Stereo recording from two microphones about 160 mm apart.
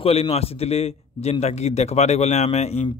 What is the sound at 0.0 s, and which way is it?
A man's voice, 40° left (ahead or behind).